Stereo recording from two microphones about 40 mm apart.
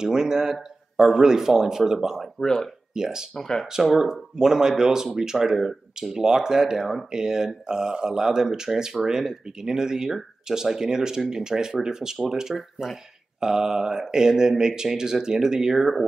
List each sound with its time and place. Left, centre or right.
0.0 s speech: centre
2.4 s speech: centre
2.9 s speech: centre